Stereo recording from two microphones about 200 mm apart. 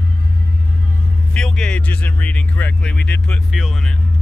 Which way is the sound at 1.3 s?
5° left (ahead or behind).